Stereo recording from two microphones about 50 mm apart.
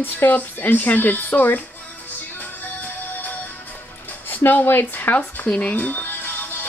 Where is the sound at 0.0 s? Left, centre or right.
Left.